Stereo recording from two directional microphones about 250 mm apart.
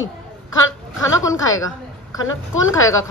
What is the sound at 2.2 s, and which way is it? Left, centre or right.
Speech, left.